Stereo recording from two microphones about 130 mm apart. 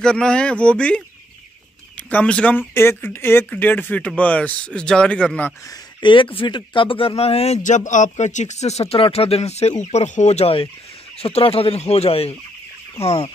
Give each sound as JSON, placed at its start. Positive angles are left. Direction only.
{"t": 0.0, "sound": "speech", "side_deg": 5}
{"t": 5.7, "sound": "speech", "side_deg": 40}